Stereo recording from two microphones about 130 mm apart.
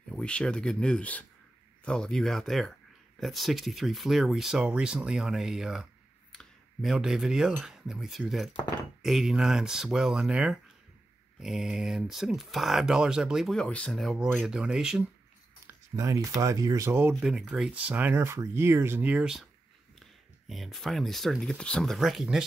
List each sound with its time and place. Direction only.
0.1 s speech: 10° left (ahead or behind)
15.6 s speech: 25° right (ahead or behind)
17.2 s speech: 5° right (ahead or behind)
20.4 s speech: centre (ahead or behind)